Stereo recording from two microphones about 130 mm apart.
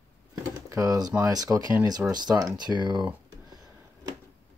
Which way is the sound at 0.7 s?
25° right (ahead or behind).